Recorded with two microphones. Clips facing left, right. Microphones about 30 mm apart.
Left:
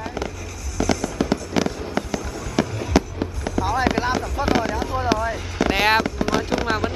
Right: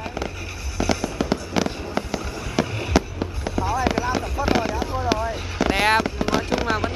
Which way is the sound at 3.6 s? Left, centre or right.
Left.